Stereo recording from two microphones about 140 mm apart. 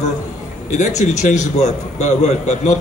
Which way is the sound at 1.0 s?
55° left (ahead or behind).